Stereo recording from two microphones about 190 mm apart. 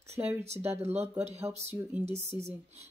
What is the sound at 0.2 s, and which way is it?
Speech, 15° right (ahead or behind).